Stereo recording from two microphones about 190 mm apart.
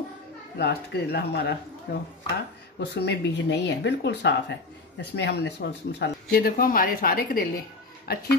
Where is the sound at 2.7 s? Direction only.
65° left (ahead or behind).